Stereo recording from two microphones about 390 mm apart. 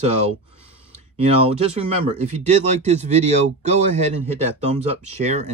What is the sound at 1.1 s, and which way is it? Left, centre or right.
Speech, centre.